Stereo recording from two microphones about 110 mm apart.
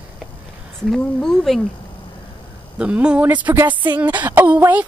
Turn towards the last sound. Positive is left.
turn(degrees=-15)  # may be behind; listen again after turning